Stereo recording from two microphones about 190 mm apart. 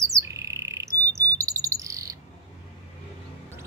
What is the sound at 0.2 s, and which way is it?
Bird, 15° right (ahead or behind).